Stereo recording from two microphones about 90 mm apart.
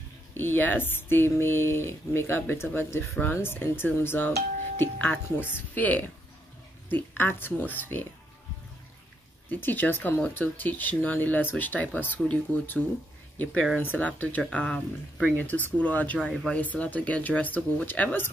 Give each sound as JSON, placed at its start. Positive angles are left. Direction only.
{"t": 0.3, "sound": "speech", "side_deg": 25}
{"t": 9.5, "sound": "speech", "side_deg": 20}
{"t": 16.3, "sound": "speech", "side_deg": 0}
{"t": 16.5, "sound": "speech", "side_deg": 15}